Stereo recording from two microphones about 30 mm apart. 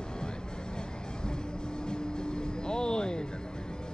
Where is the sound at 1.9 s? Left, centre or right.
Left.